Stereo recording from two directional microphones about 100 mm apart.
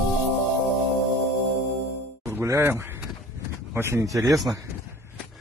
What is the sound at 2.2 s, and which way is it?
Music, 25° right (ahead or behind).